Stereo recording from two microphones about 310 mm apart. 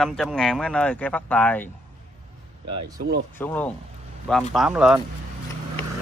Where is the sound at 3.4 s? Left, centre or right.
Centre.